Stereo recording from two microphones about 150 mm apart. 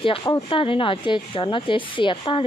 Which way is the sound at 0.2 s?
30° left (ahead or behind).